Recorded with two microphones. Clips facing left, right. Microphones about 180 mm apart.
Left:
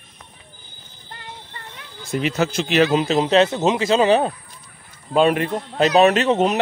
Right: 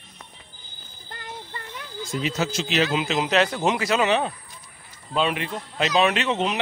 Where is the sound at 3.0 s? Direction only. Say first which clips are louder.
Left 6 dB; 35° left (ahead or behind).